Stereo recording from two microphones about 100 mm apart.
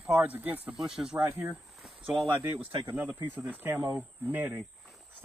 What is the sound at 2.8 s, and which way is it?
Speech, 20° right (ahead or behind).